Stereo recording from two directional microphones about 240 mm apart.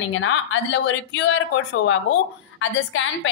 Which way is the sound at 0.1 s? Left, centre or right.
Left.